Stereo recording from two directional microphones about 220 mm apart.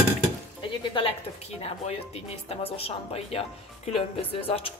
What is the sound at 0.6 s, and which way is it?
Speech, 25° left (ahead or behind).